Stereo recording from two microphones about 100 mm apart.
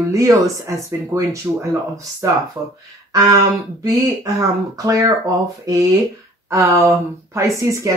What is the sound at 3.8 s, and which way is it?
Speech, 35° right (ahead or behind).